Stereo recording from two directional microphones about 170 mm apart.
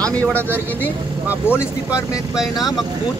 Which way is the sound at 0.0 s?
10° left (ahead or behind).